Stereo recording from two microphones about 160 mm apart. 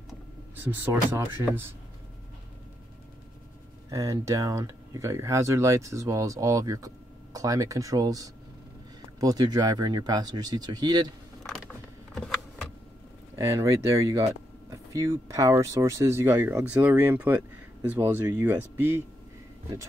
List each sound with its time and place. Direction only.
1.1 s speech: 15° right (ahead or behind)
3.9 s speech: 20° right (ahead or behind)
11.4 s a sound: centre (ahead or behind)
13.4 s speech: 15° right (ahead or behind)